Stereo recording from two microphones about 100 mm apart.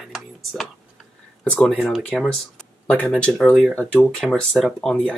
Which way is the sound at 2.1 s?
Centre (ahead or behind).